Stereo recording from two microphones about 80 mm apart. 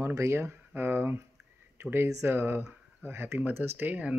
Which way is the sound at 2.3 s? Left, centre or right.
Right.